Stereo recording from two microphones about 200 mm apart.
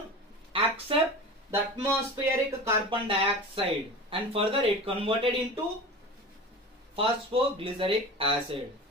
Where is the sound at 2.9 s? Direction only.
30° right (ahead or behind).